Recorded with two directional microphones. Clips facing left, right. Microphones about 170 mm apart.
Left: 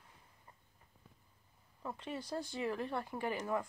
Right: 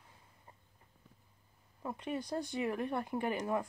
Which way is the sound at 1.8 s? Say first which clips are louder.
Right 4 dB; 15° right (ahead or behind).